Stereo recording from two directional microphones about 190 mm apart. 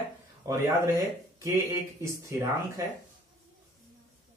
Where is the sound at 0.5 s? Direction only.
20° right (ahead or behind).